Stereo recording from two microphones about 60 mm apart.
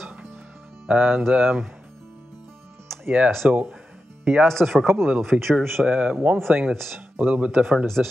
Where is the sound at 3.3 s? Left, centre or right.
Centre.